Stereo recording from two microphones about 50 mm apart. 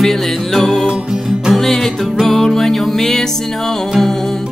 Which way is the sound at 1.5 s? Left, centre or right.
Centre.